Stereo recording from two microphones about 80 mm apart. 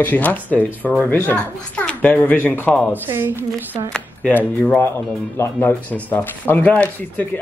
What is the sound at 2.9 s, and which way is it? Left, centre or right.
Speech, right.